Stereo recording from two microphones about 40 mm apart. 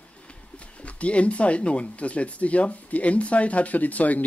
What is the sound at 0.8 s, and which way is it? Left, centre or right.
Speech, left.